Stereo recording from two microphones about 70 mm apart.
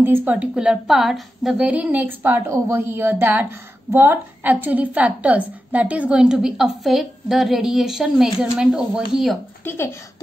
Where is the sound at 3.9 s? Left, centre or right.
Right.